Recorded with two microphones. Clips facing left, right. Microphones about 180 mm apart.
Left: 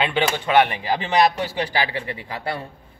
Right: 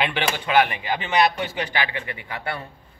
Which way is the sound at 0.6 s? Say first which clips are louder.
Left 3 dB; 35° left (ahead or behind).